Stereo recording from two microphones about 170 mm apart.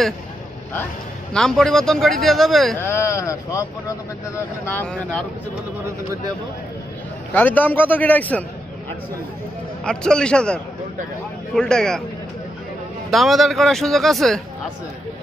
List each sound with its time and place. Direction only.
1.3 s speech: 5° left (ahead or behind)
2.8 s a man's voice: 15° left (ahead or behind)
7.3 s a man's voice: 10° left (ahead or behind)
9.8 s speech: 5° left (ahead or behind)
13.1 s speech: centre (ahead or behind)